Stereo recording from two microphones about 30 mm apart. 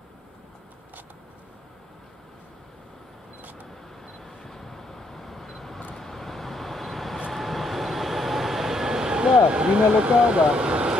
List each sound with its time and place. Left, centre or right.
4.2 s vehicle: centre; by 9.4 s right
9.6 s speech: right
10.4 s vehicle: right